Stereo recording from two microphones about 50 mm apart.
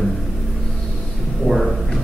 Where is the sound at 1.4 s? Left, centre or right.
Centre.